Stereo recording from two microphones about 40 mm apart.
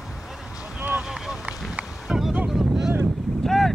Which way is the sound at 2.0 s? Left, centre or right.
Centre.